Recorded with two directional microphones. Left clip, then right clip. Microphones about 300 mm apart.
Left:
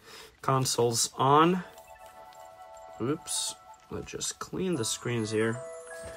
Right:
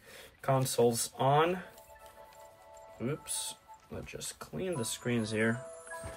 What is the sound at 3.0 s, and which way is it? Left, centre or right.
Speech, centre.